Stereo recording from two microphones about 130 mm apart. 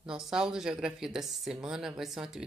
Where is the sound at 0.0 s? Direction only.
5° right (ahead or behind).